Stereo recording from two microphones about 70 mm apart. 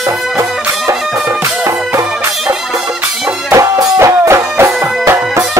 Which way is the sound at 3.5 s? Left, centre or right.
Right.